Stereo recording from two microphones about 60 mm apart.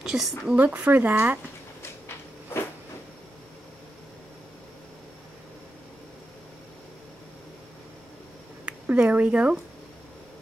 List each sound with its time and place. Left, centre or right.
0.0 s a woman's voice: centre
0.6 s speech: right
8.6 s speech: right